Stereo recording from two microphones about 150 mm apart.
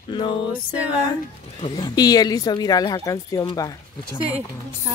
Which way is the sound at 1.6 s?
30° left (ahead or behind).